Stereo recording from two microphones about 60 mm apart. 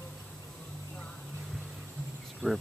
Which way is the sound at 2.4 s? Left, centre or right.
Left.